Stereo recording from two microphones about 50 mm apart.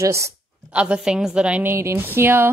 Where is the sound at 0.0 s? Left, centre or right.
Right.